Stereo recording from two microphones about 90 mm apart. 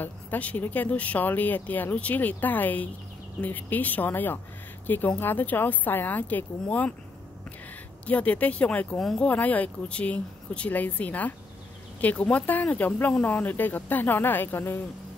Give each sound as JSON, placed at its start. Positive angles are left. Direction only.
{"t": 0.0, "sound": "speech", "side_deg": 20}
{"t": 8.1, "sound": "speech", "side_deg": 15}
{"t": 9.3, "sound": "speech", "side_deg": 15}